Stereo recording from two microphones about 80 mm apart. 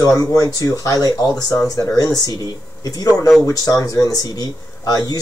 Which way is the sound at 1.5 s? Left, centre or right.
Left.